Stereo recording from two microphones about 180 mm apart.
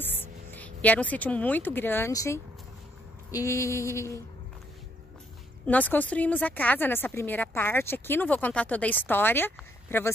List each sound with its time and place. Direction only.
0.0 s a woman's voice: 10° left (ahead or behind)
5.7 s a woman's voice: 10° left (ahead or behind)